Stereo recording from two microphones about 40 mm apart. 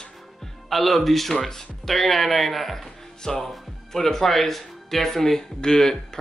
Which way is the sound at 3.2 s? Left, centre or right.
Centre.